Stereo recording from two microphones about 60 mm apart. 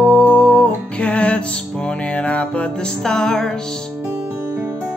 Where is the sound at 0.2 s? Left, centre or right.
Centre.